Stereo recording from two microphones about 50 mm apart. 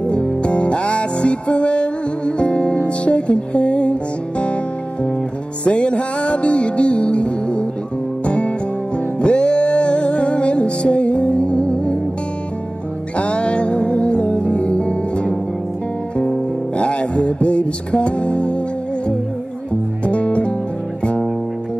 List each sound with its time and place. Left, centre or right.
0.0 s music: left
5.7 s music: left
13.2 s music: left
20.1 s music: left